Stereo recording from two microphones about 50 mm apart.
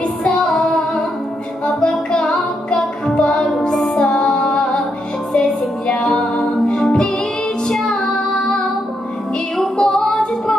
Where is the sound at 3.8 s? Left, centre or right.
Centre.